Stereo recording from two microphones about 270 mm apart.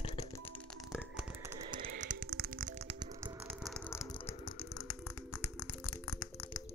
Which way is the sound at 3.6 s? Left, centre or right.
Centre.